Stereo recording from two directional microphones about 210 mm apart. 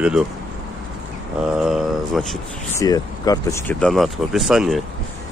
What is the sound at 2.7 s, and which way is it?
Speech, 15° left (ahead or behind).